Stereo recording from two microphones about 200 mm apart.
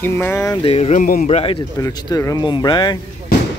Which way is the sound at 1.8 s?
15° left (ahead or behind).